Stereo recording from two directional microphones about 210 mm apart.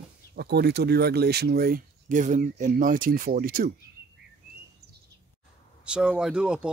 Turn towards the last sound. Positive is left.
turn(degrees=-5)  # may be behind; listen again after turning